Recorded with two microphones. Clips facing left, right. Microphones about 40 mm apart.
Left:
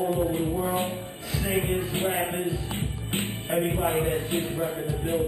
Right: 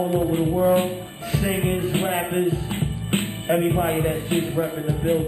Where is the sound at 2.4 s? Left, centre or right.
Right.